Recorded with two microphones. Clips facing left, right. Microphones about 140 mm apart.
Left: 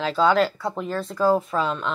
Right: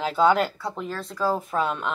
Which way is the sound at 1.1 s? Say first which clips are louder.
Left 6 dB; 25° left (ahead or behind).